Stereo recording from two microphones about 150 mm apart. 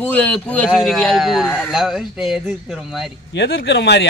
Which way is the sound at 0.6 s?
5° right (ahead or behind).